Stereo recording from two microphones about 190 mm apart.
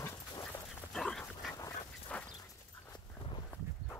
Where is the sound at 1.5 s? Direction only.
10° left (ahead or behind).